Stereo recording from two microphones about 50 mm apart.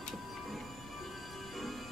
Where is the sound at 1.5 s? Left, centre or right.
Centre.